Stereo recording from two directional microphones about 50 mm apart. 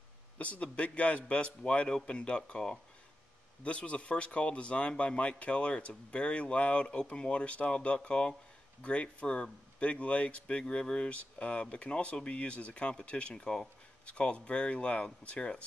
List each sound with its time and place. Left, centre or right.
0.4 s speech: left